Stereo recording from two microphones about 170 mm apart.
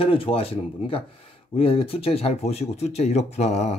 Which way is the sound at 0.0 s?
35° left (ahead or behind).